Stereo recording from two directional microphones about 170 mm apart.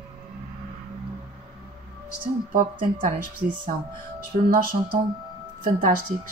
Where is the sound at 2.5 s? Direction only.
50° right (ahead or behind).